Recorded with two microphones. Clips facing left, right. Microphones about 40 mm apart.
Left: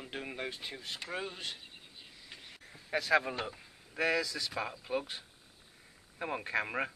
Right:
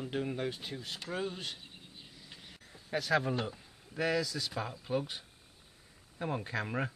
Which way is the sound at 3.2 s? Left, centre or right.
Centre.